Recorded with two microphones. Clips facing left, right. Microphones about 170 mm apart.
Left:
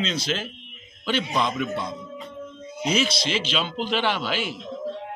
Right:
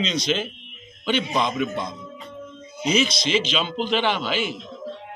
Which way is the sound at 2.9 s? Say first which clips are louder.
Right 4 dB; 5° left (ahead or behind).